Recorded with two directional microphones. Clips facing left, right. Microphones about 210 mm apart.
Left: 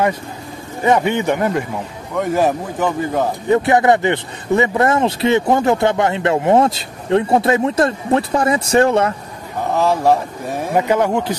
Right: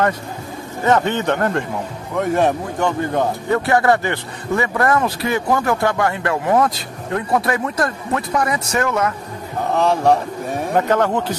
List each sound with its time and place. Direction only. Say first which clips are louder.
0.8 s a man's voice: left 2 dB; 10° left (ahead or behind)
3.4 s a man's voice: left 4 dB; 20° left (ahead or behind)
9.8 s a man's voice: left 1 dB; centre (ahead or behind)